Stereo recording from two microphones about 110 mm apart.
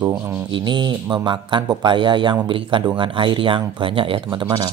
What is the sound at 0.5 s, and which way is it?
Speech, 45° right (ahead or behind).